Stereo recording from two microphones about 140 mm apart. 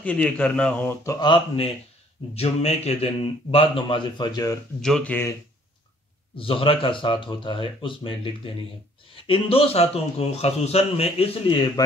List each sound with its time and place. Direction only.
0.0 s a man's voice: 10° left (ahead or behind)
1.2 s speech: 35° left (ahead or behind)
2.3 s a man's voice: 50° left (ahead or behind); by 4.6 s 25° left (ahead or behind)
4.8 s speech: 5° left (ahead or behind)
6.3 s a man's voice: 40° left (ahead or behind)